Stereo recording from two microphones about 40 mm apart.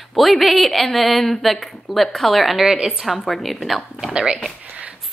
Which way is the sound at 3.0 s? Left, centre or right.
Centre.